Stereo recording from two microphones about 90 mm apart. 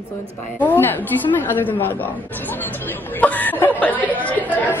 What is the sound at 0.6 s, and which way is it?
Speech, 20° left (ahead or behind).